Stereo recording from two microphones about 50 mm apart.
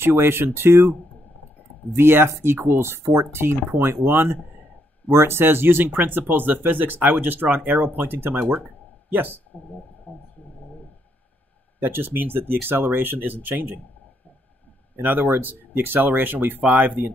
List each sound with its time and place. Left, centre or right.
0.0 s speech: right
2.0 s speech: right
3.8 s speech: right
8.6 s a sound: right
10.1 s speech: left
11.8 s speech: right
15.0 s speech: right